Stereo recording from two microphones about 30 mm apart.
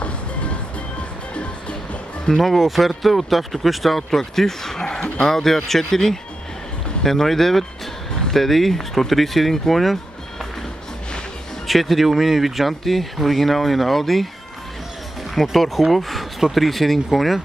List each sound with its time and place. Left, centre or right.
0.0 s music: left
2.5 s speech: centre
4.1 s speech: centre
11.6 s speech: centre
15.4 s speech: centre